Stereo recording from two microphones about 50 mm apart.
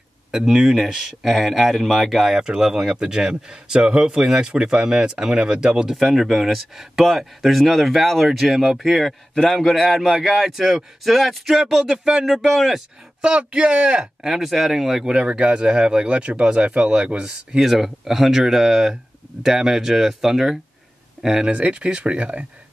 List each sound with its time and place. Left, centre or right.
0.5 s speech: centre
5.9 s speech: centre
13.2 s speech: right
14.2 s speech: centre
15.1 s speech: right
21.5 s speech: right